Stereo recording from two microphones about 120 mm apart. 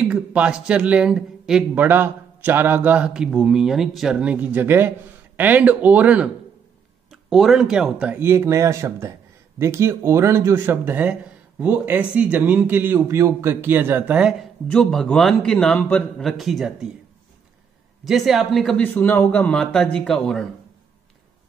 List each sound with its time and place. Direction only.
0.0 s speech: 10° right (ahead or behind)
1.9 s speech: 15° right (ahead or behind)
8.2 s speech: 20° right (ahead or behind)
14.7 s a man's voice: 5° left (ahead or behind)
18.0 s a man's voice: centre (ahead or behind)
18.8 s a man's voice: 15° left (ahead or behind)